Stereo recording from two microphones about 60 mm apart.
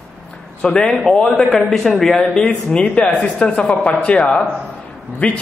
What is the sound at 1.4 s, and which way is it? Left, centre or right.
A man's voice, centre.